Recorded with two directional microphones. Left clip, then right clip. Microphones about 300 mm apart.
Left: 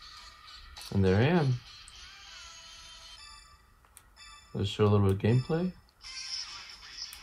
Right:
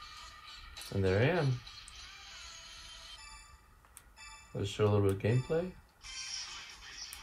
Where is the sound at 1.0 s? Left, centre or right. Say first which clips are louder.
Left 3 dB; centre.